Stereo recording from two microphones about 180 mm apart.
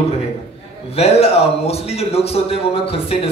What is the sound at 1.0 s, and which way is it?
Speech, 35° left (ahead or behind).